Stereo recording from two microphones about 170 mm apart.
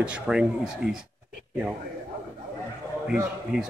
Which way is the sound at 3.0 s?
5° right (ahead or behind).